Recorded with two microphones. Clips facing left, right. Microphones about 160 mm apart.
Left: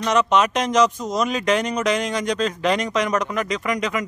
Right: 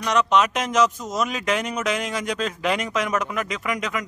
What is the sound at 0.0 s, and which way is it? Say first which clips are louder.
Speech: left 2 dB; centre (ahead or behind).